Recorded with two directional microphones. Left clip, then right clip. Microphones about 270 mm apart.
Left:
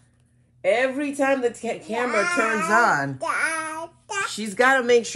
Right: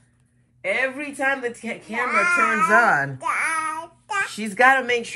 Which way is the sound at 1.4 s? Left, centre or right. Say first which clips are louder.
Left 4 dB; centre.